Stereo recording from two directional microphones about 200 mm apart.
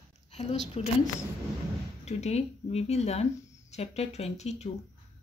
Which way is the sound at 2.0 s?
35° left (ahead or behind).